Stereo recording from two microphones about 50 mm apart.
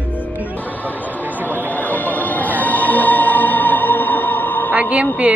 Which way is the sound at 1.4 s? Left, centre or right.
Left.